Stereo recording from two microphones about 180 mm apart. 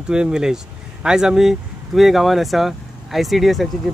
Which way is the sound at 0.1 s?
5° right (ahead or behind).